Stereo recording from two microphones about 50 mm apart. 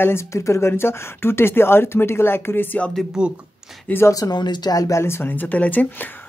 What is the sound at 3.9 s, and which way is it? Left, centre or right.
Speech, left.